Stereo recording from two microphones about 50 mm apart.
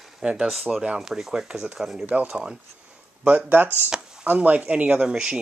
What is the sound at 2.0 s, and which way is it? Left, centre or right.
Speech, right.